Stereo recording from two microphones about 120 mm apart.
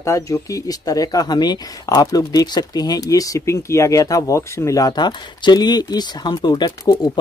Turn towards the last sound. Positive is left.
turn(degrees=35)  # may be behind; listen again after turning